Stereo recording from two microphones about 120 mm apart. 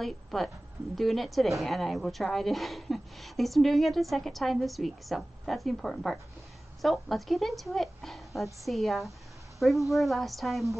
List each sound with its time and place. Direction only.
0.0 s a woman's voice: centre (ahead or behind)